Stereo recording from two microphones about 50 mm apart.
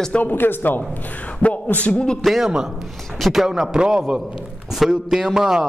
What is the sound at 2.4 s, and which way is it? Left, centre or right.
A man's voice, centre.